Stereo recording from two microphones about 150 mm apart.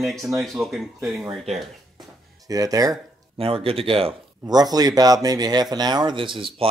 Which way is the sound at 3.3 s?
40° right (ahead or behind).